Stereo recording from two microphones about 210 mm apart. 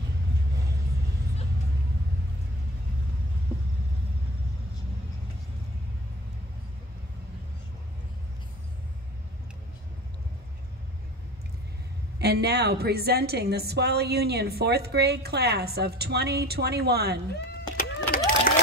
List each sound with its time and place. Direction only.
12.2 s a woman's voice: 50° right (ahead or behind)
17.5 s vehicle: 45° left (ahead or behind)